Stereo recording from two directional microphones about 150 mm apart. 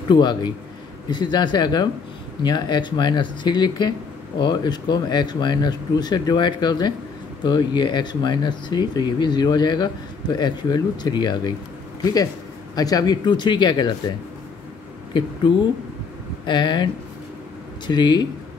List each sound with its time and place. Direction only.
0.1 s speech: 30° left (ahead or behind)
12.7 s speech: 25° left (ahead or behind)
15.4 s speech: 30° left (ahead or behind)